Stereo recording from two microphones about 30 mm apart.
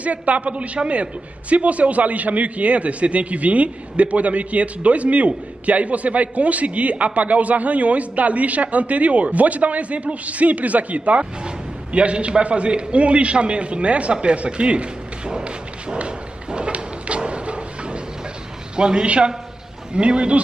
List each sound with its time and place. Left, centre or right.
0.0 s a man's voice: right
16.0 s a sound: right
18.8 s a man's voice: right
19.0 s a man's voice: right